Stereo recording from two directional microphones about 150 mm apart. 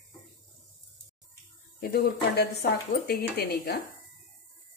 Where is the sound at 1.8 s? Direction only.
85° left.